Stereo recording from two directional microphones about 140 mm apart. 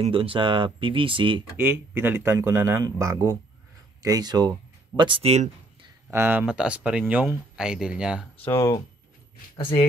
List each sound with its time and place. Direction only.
0.0 s speech: 40° right (ahead or behind)
1.6 s speech: 15° right (ahead or behind); by 5.5 s 50° right (ahead or behind)
6.0 s speech: 15° right (ahead or behind)
8.4 s speech: 20° left (ahead or behind)